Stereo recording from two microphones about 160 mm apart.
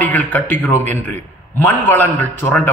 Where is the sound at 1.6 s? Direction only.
15° left (ahead or behind).